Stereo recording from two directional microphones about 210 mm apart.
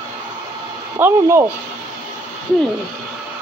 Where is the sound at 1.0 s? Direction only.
10° right (ahead or behind).